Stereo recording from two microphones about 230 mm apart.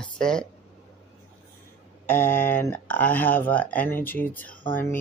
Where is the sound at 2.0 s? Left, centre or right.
Centre.